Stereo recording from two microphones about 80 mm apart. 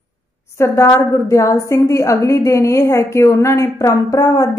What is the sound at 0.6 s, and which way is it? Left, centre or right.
A woman's voice, left.